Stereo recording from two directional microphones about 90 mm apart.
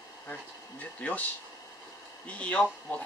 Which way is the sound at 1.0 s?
20° left (ahead or behind).